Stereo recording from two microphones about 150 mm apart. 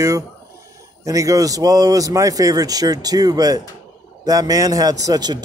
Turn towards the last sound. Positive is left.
turn(degrees=-25)  # may be behind; listen again after turning